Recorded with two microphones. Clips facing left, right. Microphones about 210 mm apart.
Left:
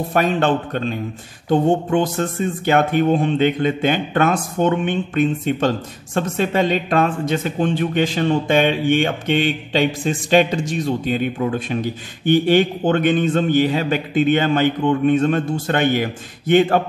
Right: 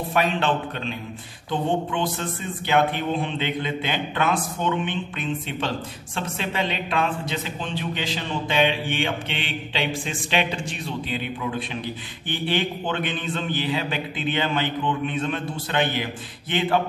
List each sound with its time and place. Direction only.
0.1 s speech: 45° left (ahead or behind)